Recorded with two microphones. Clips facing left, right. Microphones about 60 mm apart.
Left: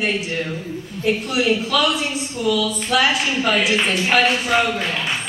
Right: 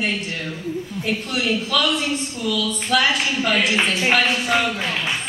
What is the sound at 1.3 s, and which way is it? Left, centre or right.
A woman's voice, centre.